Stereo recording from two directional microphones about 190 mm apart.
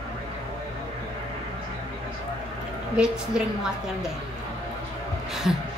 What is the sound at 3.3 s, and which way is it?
Speech, 5° right (ahead or behind).